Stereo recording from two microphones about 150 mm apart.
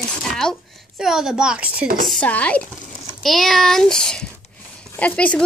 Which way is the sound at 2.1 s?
10° left (ahead or behind).